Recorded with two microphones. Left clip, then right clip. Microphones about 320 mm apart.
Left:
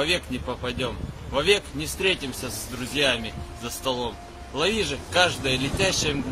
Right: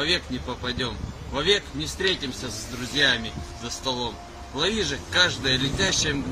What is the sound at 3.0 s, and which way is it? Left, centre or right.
Speech, centre.